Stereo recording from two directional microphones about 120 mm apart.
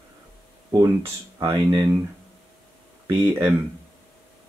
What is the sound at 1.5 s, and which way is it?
Speech, 30° right (ahead or behind).